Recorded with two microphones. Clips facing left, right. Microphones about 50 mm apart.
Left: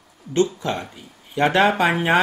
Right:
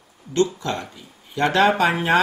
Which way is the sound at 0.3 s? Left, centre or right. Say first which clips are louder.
Left 1 dB; left.